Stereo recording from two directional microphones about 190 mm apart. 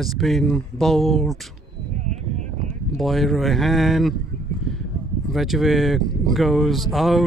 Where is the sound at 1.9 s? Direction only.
40° right (ahead or behind).